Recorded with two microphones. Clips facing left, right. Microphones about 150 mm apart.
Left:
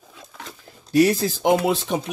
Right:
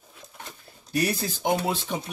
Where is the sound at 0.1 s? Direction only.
90° left.